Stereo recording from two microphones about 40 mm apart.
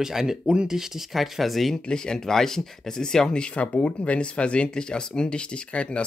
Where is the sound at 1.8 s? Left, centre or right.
Centre.